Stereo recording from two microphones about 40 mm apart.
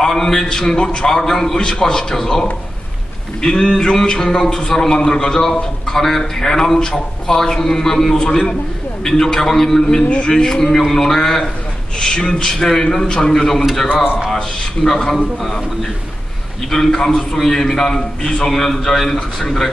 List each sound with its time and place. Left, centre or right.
0.0 s a man's voice: centre
3.4 s a man's voice: centre
10.0 s a man's voice: left
10.3 s a man's voice: centre
16.9 s a man's voice: centre